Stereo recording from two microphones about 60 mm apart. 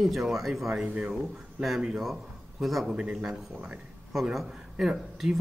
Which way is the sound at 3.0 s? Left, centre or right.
Centre.